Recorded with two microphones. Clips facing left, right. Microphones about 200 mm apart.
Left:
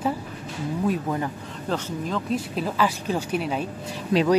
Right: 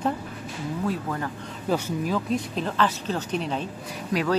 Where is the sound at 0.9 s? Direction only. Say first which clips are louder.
Left 5 dB; 20° left (ahead or behind).